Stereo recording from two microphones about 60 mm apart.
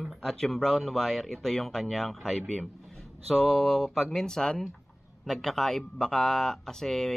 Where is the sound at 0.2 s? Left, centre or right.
Centre.